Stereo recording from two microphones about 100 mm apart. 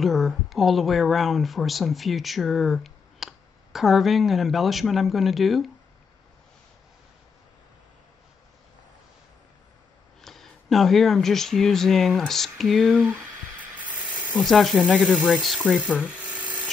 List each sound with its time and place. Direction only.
0.0 s speech: centre (ahead or behind)
10.2 s speech: centre (ahead or behind)
13.0 s a sound: 20° right (ahead or behind)
14.3 s speech: centre (ahead or behind)
15.7 s rub: 15° right (ahead or behind)